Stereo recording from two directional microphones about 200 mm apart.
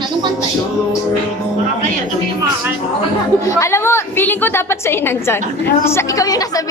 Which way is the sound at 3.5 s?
15° left (ahead or behind).